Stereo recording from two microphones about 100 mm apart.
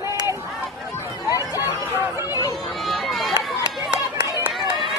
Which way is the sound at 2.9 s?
Centre (ahead or behind).